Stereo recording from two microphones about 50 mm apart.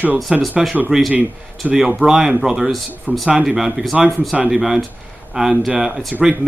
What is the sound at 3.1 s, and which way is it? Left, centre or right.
Speech, right.